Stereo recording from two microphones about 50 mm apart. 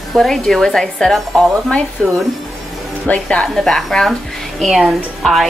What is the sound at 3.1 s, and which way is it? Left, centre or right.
Speech, left.